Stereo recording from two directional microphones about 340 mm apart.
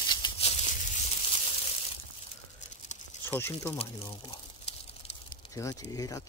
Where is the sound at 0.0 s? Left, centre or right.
Centre.